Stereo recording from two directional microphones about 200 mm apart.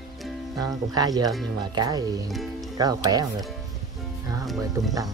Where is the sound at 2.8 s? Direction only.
20° right (ahead or behind).